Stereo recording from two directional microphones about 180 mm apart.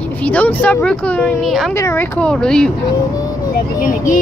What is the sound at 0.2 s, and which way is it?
Speech, 10° left (ahead or behind).